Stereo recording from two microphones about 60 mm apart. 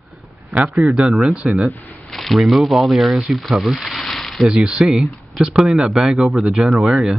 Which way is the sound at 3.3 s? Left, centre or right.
Centre.